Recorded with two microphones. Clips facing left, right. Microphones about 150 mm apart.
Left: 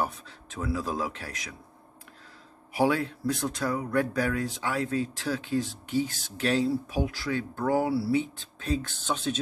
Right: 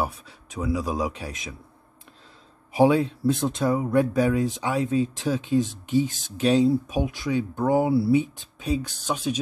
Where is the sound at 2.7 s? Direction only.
20° right (ahead or behind).